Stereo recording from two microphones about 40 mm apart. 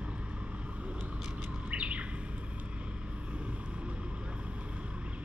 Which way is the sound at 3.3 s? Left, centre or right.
Right.